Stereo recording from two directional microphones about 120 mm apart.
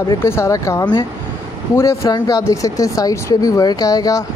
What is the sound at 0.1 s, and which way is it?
Speech, 25° left (ahead or behind).